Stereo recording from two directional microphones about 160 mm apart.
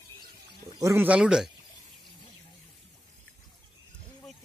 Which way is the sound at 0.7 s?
15° right (ahead or behind).